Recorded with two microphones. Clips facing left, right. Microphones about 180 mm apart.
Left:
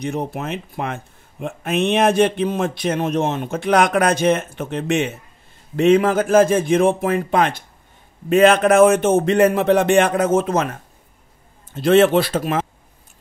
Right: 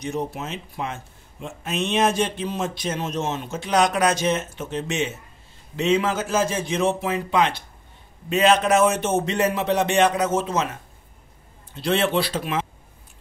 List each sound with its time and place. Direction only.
0.0 s speech: 60° left (ahead or behind)